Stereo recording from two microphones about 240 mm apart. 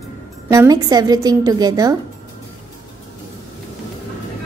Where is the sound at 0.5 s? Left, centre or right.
Centre.